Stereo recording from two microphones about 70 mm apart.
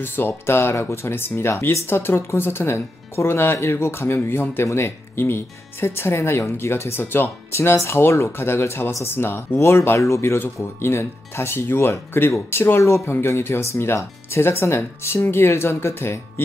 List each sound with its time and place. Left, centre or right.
0.0 s speech: left